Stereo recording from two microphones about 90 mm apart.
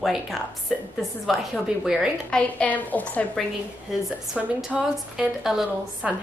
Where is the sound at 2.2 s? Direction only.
10° left (ahead or behind).